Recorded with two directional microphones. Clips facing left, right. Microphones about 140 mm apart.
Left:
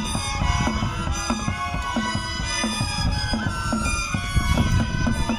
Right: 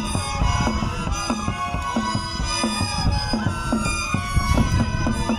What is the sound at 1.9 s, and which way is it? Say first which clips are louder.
Music: right 2 dB; 35° right (ahead or behind).